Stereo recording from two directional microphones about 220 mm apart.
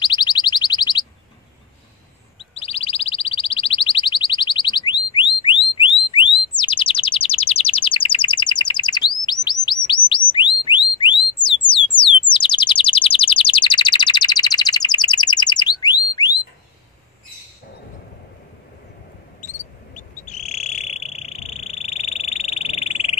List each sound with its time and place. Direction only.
0.0 s alarm: 20° left (ahead or behind)
2.3 s chirp: 25° left (ahead or behind)
5.8 s bird: 25° left (ahead or behind)
11.7 s a sound: 20° left (ahead or behind)
12.3 s chirp: 20° left (ahead or behind)
19.4 s frog: 35° left (ahead or behind)